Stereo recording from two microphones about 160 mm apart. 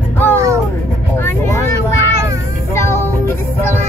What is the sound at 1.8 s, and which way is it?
Child singing, 20° right (ahead or behind).